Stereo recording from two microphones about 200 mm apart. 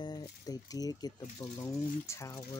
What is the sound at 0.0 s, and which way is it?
Speech, 20° left (ahead or behind).